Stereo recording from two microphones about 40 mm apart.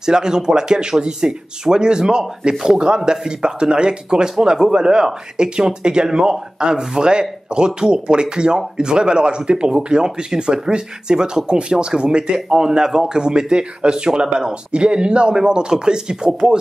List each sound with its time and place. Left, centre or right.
0.0 s speech: centre